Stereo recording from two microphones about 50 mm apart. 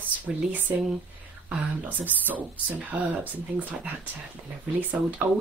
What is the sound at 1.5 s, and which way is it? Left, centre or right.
Speech, right.